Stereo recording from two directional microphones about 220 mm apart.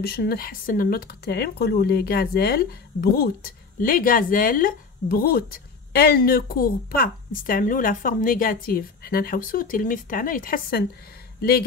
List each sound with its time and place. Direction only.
0.0 s speech: 45° left (ahead or behind)